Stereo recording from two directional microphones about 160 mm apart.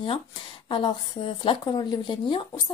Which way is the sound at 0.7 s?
25° left (ahead or behind).